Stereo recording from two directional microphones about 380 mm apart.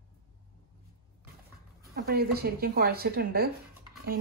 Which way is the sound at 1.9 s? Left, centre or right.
Right.